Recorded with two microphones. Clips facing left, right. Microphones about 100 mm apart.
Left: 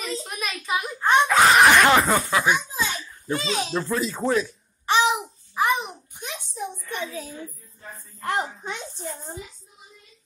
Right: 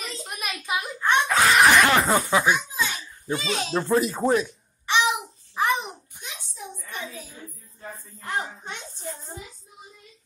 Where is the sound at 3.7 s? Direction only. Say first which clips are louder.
Right 7 dB; 20° right (ahead or behind).